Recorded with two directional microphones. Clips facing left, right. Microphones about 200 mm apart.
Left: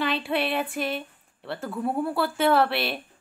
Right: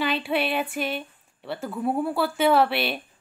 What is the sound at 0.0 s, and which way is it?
A woman's voice, centre (ahead or behind).